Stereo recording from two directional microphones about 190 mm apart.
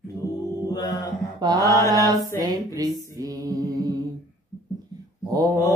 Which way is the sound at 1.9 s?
20° right (ahead or behind).